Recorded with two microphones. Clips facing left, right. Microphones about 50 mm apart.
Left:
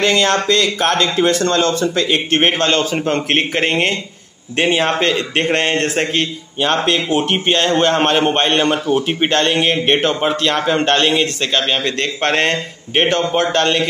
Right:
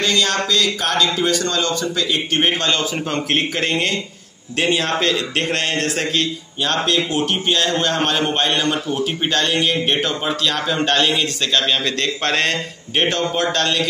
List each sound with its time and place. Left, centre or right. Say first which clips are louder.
0.0 s a man's voice: left 4 dB; left
11.1 s a man's voice: left 3 dB; left